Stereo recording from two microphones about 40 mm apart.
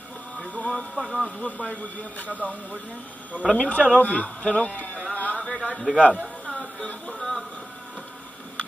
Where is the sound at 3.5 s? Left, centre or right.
Left.